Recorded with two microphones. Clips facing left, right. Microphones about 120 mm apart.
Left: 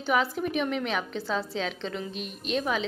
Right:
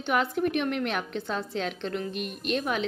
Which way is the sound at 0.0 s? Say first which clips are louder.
Right 1 dB; centre (ahead or behind).